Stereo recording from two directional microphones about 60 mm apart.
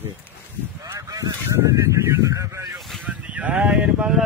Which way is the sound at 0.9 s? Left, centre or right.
Right.